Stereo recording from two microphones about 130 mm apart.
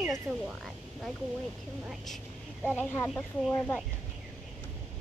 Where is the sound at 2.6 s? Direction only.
15° left (ahead or behind).